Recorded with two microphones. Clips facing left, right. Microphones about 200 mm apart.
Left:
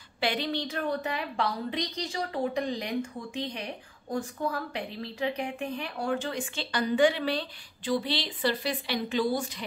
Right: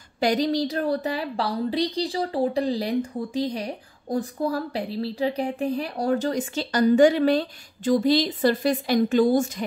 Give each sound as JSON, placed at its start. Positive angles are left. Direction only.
{"t": 0.2, "sound": "a woman's voice", "side_deg": -40}